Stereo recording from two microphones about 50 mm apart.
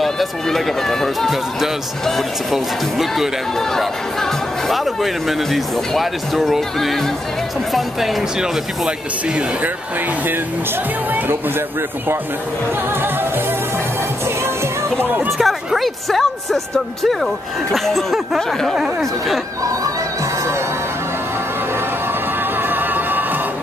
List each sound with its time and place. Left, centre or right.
0.0 s speech: centre
3.5 s speech: centre
8.2 s speech: centre
15.3 s speech: centre
22.6 s music: right